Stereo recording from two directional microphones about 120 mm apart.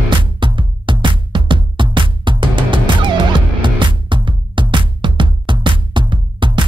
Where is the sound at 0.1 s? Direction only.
40° right (ahead or behind).